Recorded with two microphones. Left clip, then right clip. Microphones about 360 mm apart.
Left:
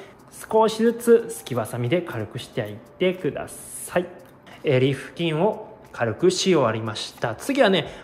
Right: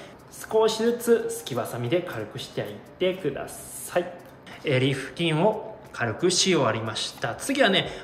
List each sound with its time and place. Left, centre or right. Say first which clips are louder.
0.4 s speech: left 3 dB; centre